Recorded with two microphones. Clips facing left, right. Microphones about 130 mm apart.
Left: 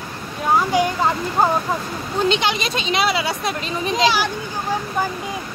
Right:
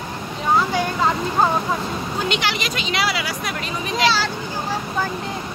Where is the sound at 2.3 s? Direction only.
20° left (ahead or behind).